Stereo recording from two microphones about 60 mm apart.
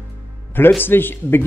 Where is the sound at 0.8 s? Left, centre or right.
Left.